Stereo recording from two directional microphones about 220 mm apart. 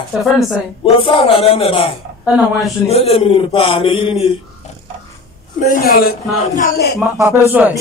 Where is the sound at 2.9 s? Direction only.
25° left (ahead or behind).